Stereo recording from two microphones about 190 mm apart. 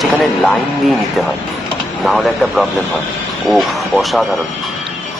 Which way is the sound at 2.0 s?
Centre (ahead or behind).